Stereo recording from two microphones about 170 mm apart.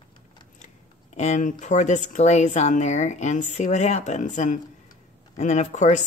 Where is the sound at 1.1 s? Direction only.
45° left (ahead or behind).